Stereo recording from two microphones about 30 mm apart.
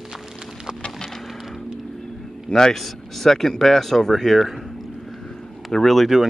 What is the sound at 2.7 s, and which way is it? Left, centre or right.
Speech, centre.